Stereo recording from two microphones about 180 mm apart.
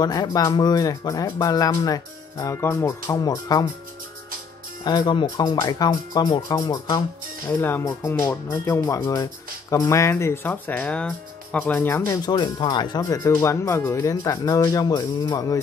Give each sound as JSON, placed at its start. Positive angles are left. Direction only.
{"t": 0.0, "sound": "speech", "side_deg": 20}
{"t": 4.8, "sound": "speech", "side_deg": 25}
{"t": 12.1, "sound": "speech", "side_deg": 25}